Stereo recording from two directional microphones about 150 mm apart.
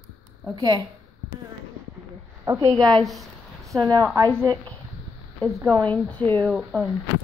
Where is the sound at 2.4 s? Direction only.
20° right (ahead or behind).